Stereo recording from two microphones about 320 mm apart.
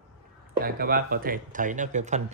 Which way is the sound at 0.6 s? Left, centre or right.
Right.